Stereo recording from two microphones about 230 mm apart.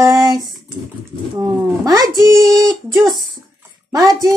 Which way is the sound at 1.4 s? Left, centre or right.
Centre.